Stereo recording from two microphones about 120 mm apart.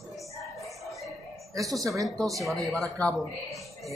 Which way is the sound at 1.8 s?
30° right (ahead or behind).